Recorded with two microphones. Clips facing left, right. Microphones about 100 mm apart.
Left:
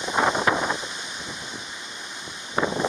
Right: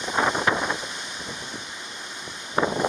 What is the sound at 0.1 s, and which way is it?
Wind noise, 25° left (ahead or behind).